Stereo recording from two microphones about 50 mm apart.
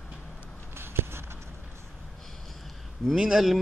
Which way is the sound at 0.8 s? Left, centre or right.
Right.